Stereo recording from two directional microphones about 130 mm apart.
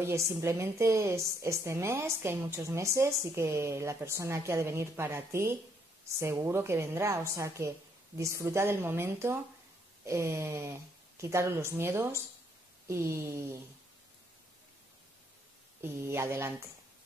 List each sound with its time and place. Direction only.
0.0 s a woman's voice: 20° right (ahead or behind)
15.8 s a woman's voice: 20° right (ahead or behind)